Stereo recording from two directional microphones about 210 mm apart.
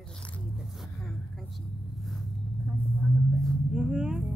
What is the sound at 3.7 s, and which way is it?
Vehicle, 5° right (ahead or behind).